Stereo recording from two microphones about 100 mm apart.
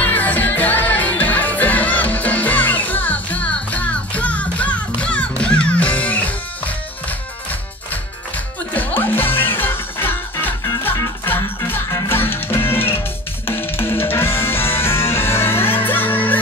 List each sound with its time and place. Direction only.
0.0 s music: 20° left (ahead or behind)
8.7 s music: 20° left (ahead or behind)